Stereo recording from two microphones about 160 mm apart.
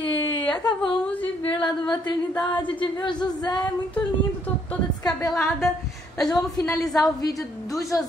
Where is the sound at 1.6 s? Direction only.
25° left (ahead or behind).